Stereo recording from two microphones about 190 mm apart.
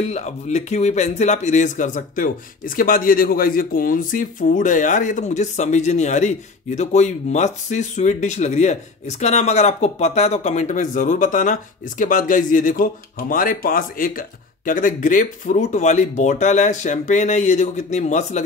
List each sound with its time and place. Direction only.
0.0 s speech: 35° left (ahead or behind)